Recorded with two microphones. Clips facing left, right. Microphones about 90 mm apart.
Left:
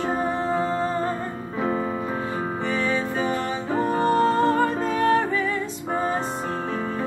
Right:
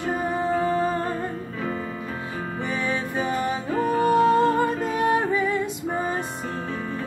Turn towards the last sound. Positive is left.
turn(degrees=-15)  # may be behind; listen again after turning